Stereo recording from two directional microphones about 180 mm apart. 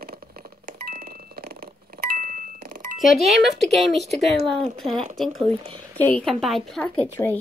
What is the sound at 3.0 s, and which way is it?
Speech, centre (ahead or behind).